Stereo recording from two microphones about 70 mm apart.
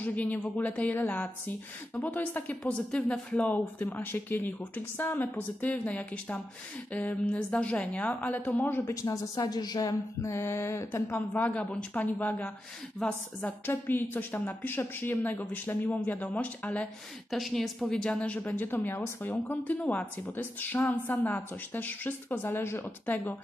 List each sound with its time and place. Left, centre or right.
0.0 s a woman's voice: left
3.5 s a woman's voice: left
8.6 s mantra: left
8.9 s a woman's voice: left
10.2 s mantra: left
11.3 s a woman's voice: left
13.0 s speech: centre
13.7 s a woman's voice: left
17.3 s a woman's voice: centre
18.6 s mantra: left
19.4 s a woman's voice: left